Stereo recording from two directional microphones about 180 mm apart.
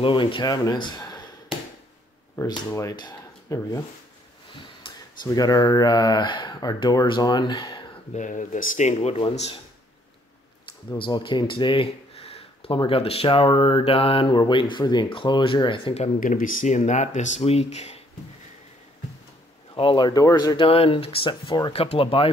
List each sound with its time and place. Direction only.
0.0 s speech: 30° left (ahead or behind)
2.3 s speech: 15° left (ahead or behind)
4.8 s speech: 20° left (ahead or behind)
8.1 s speech: 45° left (ahead or behind)
11.0 s speech: 25° left (ahead or behind)
16.2 s speech: 50° left (ahead or behind)
19.7 s speech: 25° left (ahead or behind)